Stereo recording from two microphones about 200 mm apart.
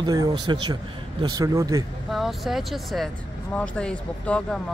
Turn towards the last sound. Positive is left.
turn(degrees=5)  # may be behind; listen again after turning